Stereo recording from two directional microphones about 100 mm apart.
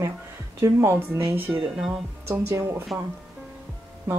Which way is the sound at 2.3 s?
30° right (ahead or behind).